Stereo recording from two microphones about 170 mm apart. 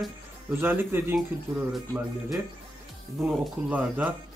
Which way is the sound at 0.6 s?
10° right (ahead or behind).